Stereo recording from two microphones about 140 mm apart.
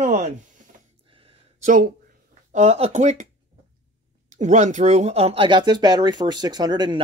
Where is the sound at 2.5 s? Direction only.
50° right (ahead or behind).